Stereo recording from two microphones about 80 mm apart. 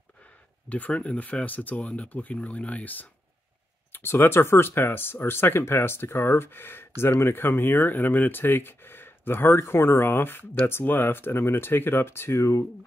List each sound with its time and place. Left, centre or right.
0.7 s speech: centre; by 12.6 s left